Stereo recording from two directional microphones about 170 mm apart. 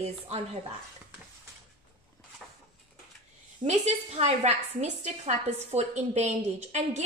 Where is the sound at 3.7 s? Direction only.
40° right (ahead or behind).